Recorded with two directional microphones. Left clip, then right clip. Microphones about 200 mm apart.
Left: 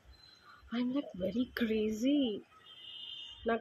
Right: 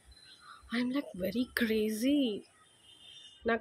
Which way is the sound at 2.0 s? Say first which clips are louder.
Right 1 dB; 10° right (ahead or behind).